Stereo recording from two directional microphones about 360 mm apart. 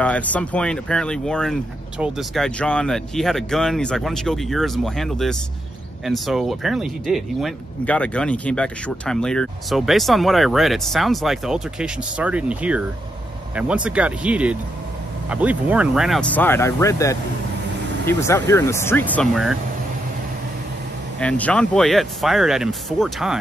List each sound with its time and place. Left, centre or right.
0.0 s speech: centre
21.2 s speech: centre